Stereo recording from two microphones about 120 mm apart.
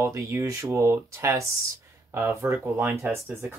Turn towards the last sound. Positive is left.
turn(degrees=-20)  # may be behind; listen again after turning